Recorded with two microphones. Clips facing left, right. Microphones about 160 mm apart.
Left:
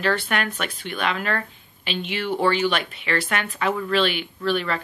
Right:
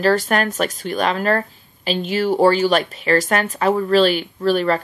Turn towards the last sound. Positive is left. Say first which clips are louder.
# right 7 dB
turn(degrees=-40)  # may be behind; listen again after turning